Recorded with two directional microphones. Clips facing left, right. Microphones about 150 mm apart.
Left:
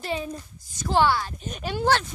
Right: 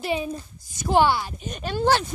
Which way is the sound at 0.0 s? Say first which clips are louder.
Right 3 dB; 10° right (ahead or behind).